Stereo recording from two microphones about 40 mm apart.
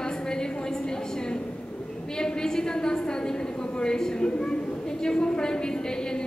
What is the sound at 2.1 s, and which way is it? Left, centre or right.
A woman's voice, centre.